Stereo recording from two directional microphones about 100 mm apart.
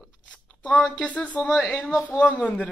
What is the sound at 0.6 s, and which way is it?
A man's voice, 10° left (ahead or behind).